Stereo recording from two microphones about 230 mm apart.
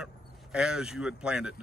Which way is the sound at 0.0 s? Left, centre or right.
Centre.